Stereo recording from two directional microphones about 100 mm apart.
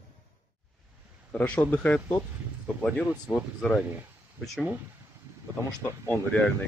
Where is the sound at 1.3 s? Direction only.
15° left (ahead or behind).